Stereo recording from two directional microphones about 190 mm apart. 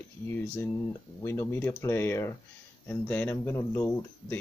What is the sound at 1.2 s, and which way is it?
Speech, 15° left (ahead or behind).